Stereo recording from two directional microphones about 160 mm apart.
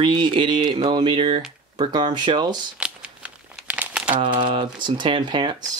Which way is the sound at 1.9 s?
25° right (ahead or behind).